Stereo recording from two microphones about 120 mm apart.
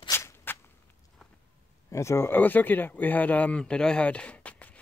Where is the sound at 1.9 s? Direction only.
20° left (ahead or behind).